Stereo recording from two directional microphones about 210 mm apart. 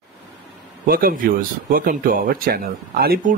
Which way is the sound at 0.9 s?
45° right (ahead or behind).